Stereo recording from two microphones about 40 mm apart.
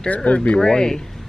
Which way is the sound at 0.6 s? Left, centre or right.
Centre.